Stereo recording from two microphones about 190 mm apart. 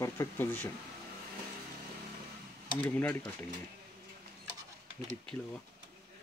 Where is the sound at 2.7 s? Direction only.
10° left (ahead or behind).